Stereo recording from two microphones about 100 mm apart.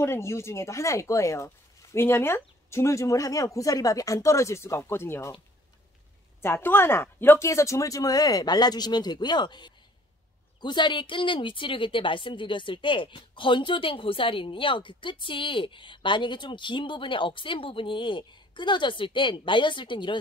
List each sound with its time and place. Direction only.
0.0 s speech: 25° left (ahead or behind)
6.4 s a woman's voice: 20° left (ahead or behind); by 20.2 s 50° left (ahead or behind)